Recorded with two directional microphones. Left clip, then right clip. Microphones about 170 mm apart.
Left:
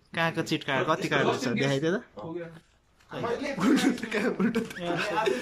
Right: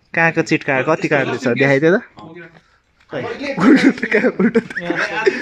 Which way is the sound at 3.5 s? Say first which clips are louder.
Right 15 dB; 45° right (ahead or behind).